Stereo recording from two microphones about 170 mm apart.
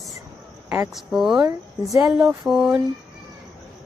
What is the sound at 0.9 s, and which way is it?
Speech, centre (ahead or behind).